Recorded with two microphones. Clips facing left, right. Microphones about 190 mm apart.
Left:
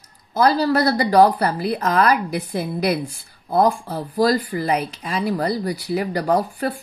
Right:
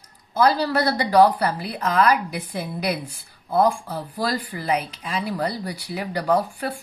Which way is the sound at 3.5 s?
40° left (ahead or behind).